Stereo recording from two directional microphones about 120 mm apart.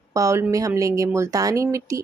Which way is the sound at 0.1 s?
25° right (ahead or behind).